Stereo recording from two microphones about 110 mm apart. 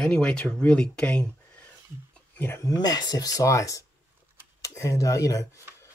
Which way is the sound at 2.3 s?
20° left (ahead or behind).